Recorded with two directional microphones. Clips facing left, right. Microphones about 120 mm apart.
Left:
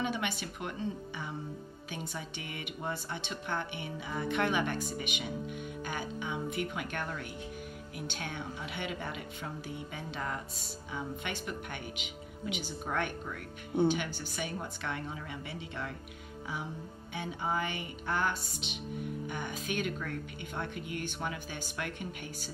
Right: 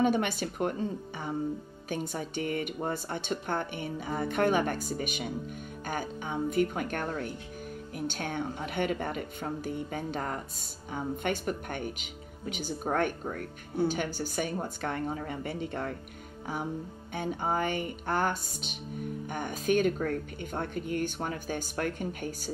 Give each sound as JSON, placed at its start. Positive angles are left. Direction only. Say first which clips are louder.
{"t": 0.0, "sound": "speech", "louder": "right 8 dB", "side_deg": -45}
{"t": 17.1, "sound": "speech", "louder": "right 4 dB", "side_deg": -50}